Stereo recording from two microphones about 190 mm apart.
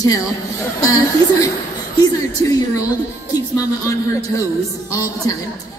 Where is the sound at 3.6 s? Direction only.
15° left (ahead or behind).